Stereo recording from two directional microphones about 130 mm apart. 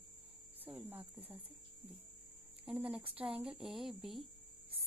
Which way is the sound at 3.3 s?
45° right (ahead or behind).